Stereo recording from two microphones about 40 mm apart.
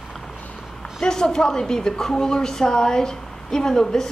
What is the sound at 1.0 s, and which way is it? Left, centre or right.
A woman's voice, centre.